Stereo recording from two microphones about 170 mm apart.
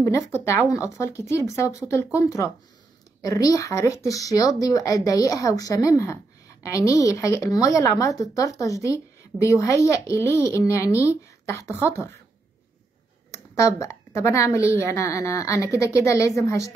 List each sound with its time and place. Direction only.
0.0 s a woman's voice: 15° left (ahead or behind)
13.3 s a woman's voice: 20° left (ahead or behind)